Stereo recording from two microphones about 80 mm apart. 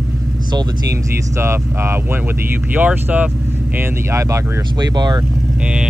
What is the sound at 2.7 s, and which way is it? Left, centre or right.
Speech, right.